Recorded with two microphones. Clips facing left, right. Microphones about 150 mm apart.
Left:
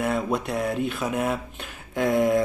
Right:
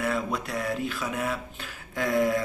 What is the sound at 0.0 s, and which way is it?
Speech, 25° left (ahead or behind).